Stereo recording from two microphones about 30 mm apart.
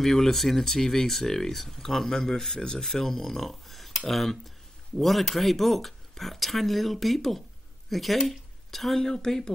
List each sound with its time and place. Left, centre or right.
0.0 s speech: centre